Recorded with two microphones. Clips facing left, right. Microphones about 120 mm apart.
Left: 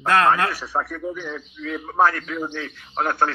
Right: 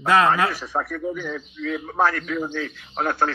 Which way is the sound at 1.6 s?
35° left (ahead or behind).